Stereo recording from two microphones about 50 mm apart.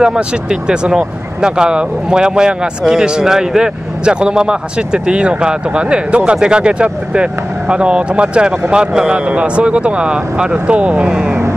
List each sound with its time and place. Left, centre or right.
0.0 s speech: centre